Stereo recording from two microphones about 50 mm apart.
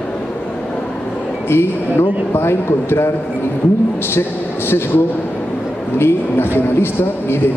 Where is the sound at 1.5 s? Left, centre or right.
Left.